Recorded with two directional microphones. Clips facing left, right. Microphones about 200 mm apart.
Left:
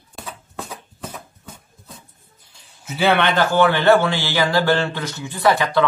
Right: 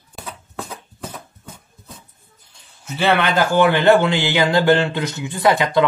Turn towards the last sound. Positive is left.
turn(degrees=-15)  # may be behind; listen again after turning